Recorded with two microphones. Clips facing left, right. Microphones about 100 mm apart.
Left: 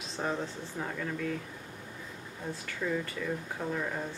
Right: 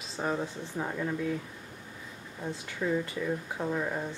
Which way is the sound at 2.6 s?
15° right (ahead or behind).